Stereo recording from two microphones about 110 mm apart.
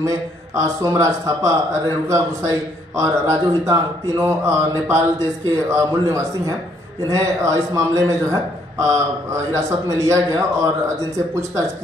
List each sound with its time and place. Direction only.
0.6 s a man's voice: 30° right (ahead or behind)